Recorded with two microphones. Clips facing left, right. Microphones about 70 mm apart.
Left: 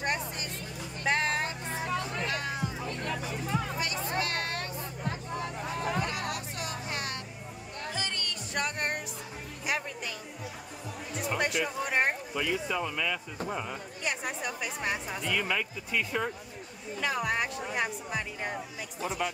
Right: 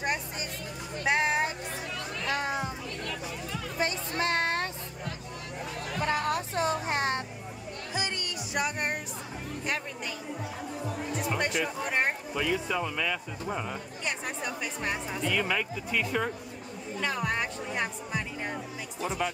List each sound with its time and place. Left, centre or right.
0.0 s music: centre
1.0 s a sound: centre
1.9 s music: left
2.3 s music: right
3.0 s chatter: left
4.2 s a sound: right
6.0 s music: right
7.9 s music: centre
11.1 s music: centre
13.5 s speech: centre